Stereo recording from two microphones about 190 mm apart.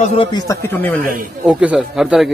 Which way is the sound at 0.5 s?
15° left (ahead or behind).